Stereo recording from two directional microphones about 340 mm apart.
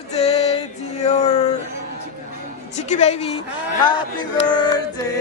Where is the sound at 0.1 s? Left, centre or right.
Centre.